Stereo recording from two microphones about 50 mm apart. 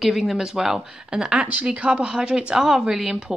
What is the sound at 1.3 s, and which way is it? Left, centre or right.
A woman's voice, right.